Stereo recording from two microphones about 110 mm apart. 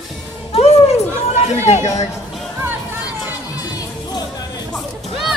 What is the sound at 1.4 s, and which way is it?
Chatter, 75° left (ahead or behind).